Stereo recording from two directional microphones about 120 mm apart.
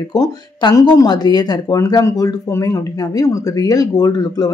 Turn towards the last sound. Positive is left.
turn(degrees=35)  # may be behind; listen again after turning